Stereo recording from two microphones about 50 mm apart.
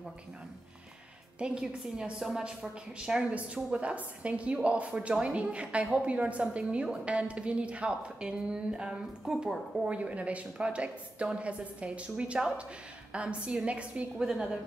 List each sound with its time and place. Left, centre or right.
1.4 s a woman's voice: centre
3.3 s a woman's voice: right
9.8 s a woman's voice: right
14.1 s a woman's voice: centre